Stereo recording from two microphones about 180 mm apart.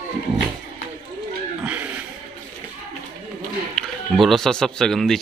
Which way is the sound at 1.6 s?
10° right (ahead or behind).